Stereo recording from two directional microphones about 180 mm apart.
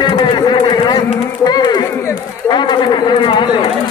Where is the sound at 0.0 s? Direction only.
25° left (ahead or behind).